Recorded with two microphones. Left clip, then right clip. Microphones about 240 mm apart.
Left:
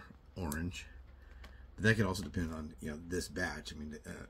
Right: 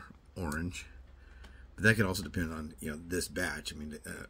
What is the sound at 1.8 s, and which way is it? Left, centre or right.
Speech, centre.